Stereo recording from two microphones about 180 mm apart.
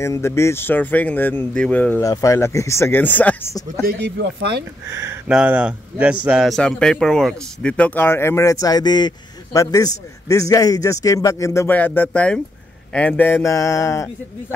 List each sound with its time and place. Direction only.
0.0 s a man's voice: 15° left (ahead or behind)
3.8 s speech: 70° right (ahead or behind)
4.8 s a man's voice: 15° right (ahead or behind); by 14.1 s 15° left (ahead or behind)